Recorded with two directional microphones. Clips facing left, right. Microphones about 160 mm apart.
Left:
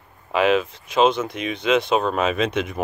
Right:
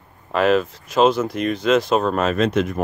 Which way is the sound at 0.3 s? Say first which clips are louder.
Right 1 dB; centre (ahead or behind).